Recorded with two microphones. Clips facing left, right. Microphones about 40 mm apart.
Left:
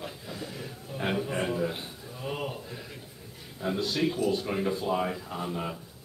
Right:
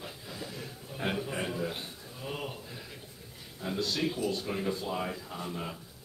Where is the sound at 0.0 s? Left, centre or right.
Centre.